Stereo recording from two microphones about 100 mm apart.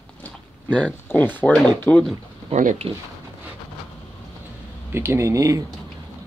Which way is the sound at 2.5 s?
90° right.